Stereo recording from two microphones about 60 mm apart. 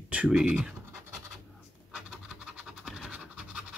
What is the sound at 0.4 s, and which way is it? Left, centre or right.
Speech, centre.